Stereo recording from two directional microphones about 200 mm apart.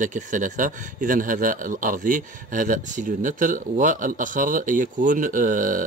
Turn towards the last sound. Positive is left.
turn(degrees=-40)  # may be behind; listen again after turning